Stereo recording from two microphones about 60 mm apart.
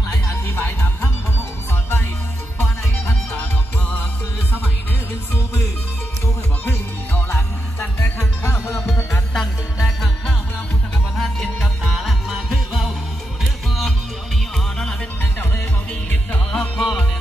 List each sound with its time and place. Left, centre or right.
0.1 s music: left
2.6 s music: centre
6.6 s music: left
8.5 s music: left
8.9 s music: centre
9.8 s music: centre
11.6 s music: centre
15.9 s music: centre